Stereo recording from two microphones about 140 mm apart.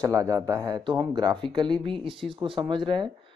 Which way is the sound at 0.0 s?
25° right (ahead or behind).